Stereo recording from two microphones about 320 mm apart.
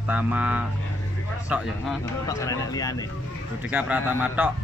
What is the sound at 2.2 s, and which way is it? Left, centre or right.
Speech, centre.